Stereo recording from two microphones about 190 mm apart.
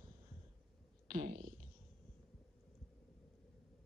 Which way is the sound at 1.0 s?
50° right (ahead or behind).